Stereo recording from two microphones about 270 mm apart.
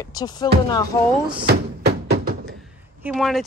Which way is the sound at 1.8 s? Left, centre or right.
Right.